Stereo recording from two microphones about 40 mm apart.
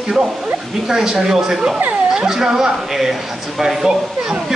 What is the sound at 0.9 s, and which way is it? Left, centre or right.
Speech, centre.